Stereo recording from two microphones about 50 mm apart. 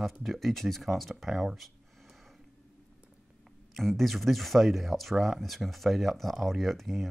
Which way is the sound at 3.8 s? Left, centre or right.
Centre.